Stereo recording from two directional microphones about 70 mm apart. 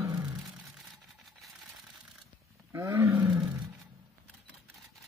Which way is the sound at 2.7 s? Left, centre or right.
Right.